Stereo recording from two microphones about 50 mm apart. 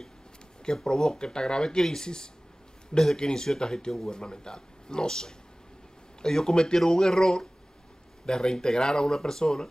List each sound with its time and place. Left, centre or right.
0.7 s a man's voice: centre